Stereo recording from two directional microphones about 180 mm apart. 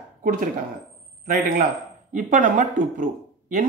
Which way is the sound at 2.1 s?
45° right (ahead or behind).